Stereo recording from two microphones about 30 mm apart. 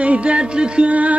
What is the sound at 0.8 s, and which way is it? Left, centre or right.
Music, right.